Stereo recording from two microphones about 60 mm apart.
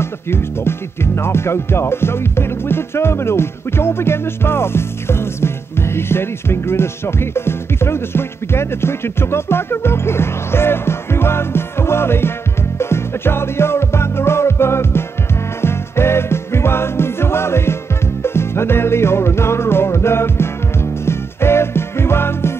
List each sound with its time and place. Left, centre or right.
0.0 s music: left